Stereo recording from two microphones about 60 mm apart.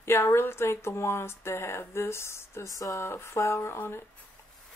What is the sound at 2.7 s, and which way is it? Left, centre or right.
Speech, left.